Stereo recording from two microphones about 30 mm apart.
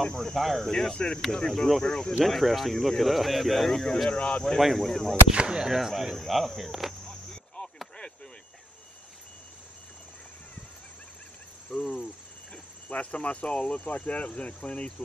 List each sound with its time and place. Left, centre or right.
0.0 s speech: centre
0.4 s speech: centre
0.7 s speech: centre
1.3 s speech: centre
2.2 s speech: centre
4.2 s speech: left
4.7 s speech: centre
5.3 s speech: right
5.6 s speech: centre
6.1 s speech: centre
11.7 s speech: centre
12.8 s speech: left
13.8 s speech: left